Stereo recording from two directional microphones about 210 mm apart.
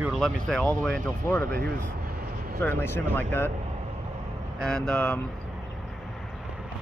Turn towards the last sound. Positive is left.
turn(degrees=5)  # may be behind; listen again after turning